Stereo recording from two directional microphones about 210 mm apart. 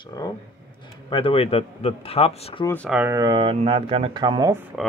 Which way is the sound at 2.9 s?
10° right (ahead or behind).